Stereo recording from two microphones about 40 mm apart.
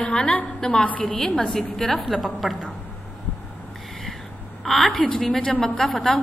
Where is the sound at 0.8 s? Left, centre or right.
Left.